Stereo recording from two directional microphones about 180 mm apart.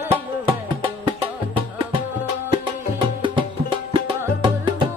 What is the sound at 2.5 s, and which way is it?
Music, 25° right (ahead or behind).